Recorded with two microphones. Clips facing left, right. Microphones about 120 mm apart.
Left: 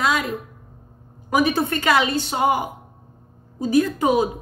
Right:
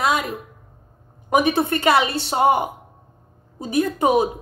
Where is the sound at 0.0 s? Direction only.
25° right (ahead or behind).